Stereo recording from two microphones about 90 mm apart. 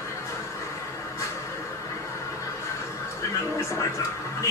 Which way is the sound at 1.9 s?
35° left (ahead or behind).